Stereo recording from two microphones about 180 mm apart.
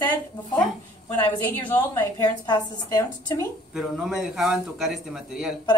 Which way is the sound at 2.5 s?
20° left (ahead or behind).